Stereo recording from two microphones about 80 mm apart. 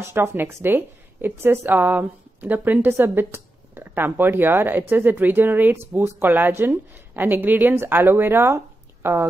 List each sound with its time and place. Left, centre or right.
0.0 s speech: right